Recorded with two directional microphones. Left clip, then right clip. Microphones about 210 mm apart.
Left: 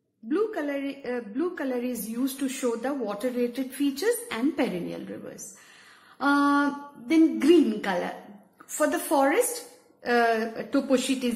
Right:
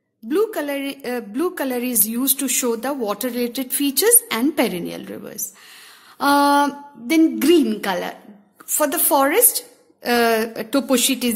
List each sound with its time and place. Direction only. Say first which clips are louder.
0.3 s a woman's voice: right 7 dB; 50° right (ahead or behind)